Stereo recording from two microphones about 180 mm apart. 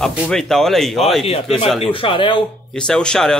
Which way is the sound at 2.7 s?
5° left (ahead or behind).